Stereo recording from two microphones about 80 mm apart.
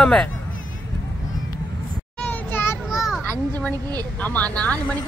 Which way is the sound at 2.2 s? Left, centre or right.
Left.